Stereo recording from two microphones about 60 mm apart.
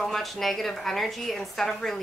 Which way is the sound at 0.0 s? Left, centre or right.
Centre.